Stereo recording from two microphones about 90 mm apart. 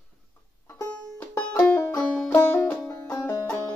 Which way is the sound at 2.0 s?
10° left (ahead or behind).